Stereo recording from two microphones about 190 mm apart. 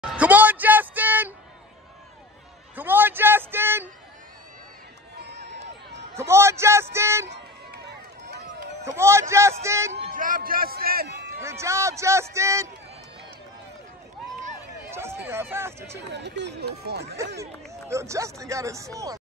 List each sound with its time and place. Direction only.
0.1 s a sound: 10° right (ahead or behind)
2.7 s a sound: 10° right (ahead or behind)
5.1 s run: 65° right (ahead or behind)
6.1 s a man's voice: 15° right (ahead or behind)
8.8 s a man's voice: 15° right (ahead or behind)
10.1 s a man's voice: 45° right (ahead or behind)
11.4 s a man's voice: 15° right (ahead or behind)
14.9 s a man's voice: 15° right (ahead or behind)
16.1 s speech: 65° right (ahead or behind)
17.8 s a man's voice: 15° right (ahead or behind)